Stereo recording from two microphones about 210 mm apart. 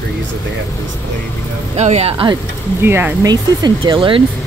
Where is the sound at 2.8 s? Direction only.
10° right (ahead or behind).